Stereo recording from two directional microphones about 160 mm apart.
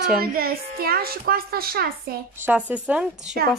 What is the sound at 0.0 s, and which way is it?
A woman's voice, 70° right (ahead or behind).